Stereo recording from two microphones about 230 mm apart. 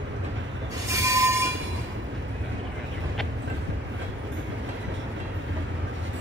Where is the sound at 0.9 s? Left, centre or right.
Centre.